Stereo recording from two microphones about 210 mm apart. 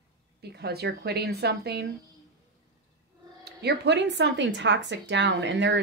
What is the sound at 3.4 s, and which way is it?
Speech, 50° right (ahead or behind).